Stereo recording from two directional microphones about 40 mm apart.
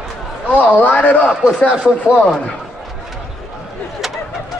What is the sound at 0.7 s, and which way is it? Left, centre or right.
Speech, left.